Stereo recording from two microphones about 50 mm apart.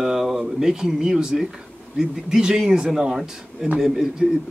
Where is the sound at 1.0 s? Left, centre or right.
Centre.